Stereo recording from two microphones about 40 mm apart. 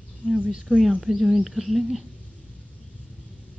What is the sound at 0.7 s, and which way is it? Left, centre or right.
Speech, centre.